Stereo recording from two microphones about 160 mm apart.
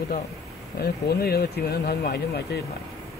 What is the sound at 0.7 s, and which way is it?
Speech, 75° left (ahead or behind).